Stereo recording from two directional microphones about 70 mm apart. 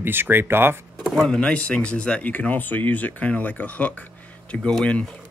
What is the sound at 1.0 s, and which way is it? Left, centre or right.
Speech, centre.